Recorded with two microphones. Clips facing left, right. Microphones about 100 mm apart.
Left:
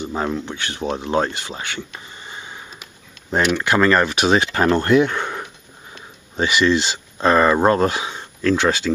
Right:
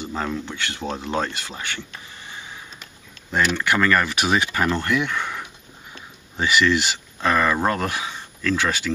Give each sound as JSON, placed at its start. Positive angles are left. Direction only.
{"t": 0.0, "sound": "speech", "side_deg": 20}